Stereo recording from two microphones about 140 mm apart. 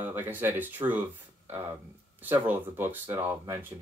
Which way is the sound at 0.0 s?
15° right (ahead or behind).